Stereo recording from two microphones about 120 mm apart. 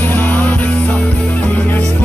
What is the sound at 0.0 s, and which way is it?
Music, 15° left (ahead or behind).